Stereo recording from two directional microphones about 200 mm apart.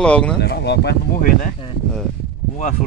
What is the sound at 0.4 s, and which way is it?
Speech, 55° left (ahead or behind).